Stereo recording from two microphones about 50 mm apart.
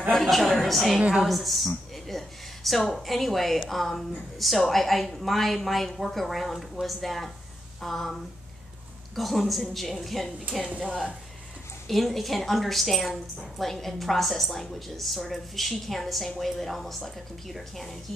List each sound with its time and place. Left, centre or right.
0.1 s a woman's voice: centre
10.7 s a woman's voice: right
11.9 s a woman's voice: centre